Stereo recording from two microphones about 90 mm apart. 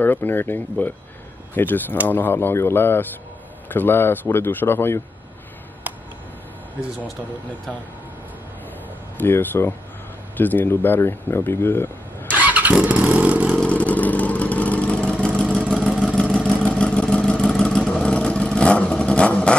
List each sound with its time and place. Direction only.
0.0 s speech: 20° left (ahead or behind)
5.9 s a sound: 20° right (ahead or behind)
9.2 s speech: 20° left (ahead or behind)
12.3 s vehicle: 20° right (ahead or behind)
13.6 s vehicle: 15° left (ahead or behind)